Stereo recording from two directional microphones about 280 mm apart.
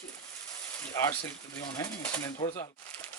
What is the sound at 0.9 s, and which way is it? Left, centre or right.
Speech, centre.